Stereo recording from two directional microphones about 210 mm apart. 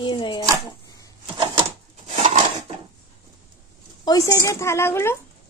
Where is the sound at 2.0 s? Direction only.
35° right (ahead or behind).